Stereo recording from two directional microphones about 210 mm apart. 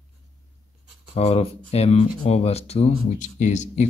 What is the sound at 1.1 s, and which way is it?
Speech, 30° left (ahead or behind).